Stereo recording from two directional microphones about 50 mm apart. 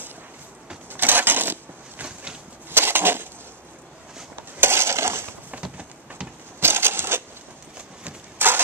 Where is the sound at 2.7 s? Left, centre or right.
Right.